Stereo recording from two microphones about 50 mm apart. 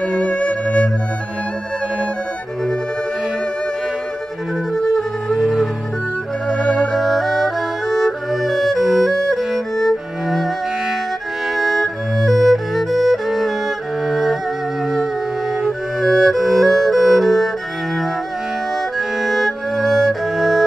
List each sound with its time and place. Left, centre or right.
0.0 s music: left
4.7 s music: centre
6.5 s music: centre
7.0 s music: centre
11.5 s music: centre
15.6 s music: centre
18.9 s music: centre